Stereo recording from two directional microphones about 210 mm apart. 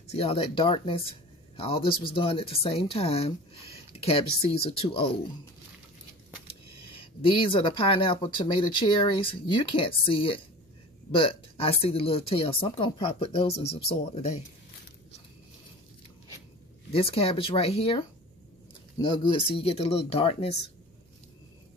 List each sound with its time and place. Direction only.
0.0 s speech: 30° left (ahead or behind)
6.8 s speech: 25° left (ahead or behind)
16.9 s speech: 25° left (ahead or behind)